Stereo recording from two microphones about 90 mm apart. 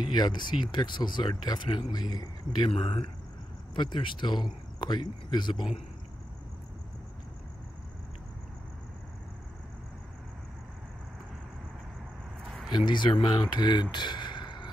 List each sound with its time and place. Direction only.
0.1 s speech: 55° left (ahead or behind)
2.7 s speech: 90° left
3.7 s speech: 65° left (ahead or behind)
12.7 s speech: 60° left (ahead or behind)
13.9 s a sound: 55° left (ahead or behind)